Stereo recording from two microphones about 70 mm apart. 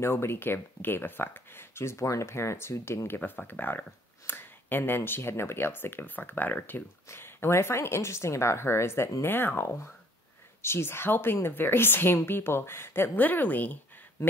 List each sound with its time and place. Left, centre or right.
0.0 s speech: left
3.2 s speech: left